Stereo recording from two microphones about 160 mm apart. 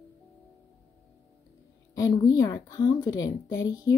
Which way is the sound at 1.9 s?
20° left (ahead or behind).